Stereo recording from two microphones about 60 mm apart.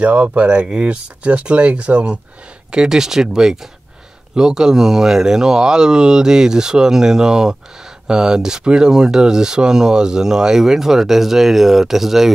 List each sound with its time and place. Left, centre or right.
0.0 s speech: right; by 12.3 s centre